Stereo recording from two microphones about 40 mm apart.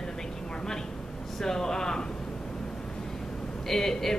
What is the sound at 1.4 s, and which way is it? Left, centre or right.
Speech, centre.